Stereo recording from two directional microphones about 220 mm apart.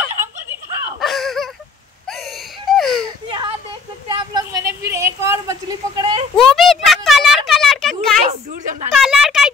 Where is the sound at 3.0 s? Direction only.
20° right (ahead or behind).